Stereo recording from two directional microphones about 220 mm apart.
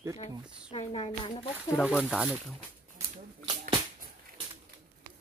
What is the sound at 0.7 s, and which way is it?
Speech, 25° left (ahead or behind).